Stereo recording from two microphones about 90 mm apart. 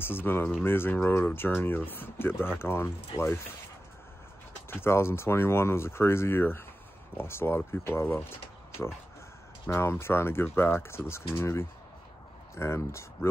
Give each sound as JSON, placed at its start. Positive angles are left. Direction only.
{"t": 0.0, "sound": "speech", "side_deg": 25}
{"t": 4.6, "sound": "speech", "side_deg": 25}
{"t": 9.7, "sound": "speech", "side_deg": 30}